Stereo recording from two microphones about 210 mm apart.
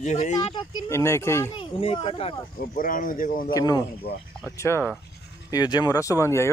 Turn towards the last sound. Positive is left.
turn(degrees=15)  # may be behind; listen again after turning